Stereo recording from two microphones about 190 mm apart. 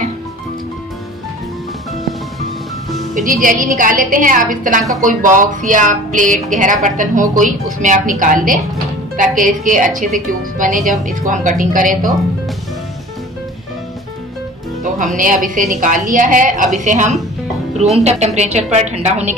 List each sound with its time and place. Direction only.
3.2 s a woman's voice: 45° right (ahead or behind)
14.8 s a woman's voice: 40° right (ahead or behind)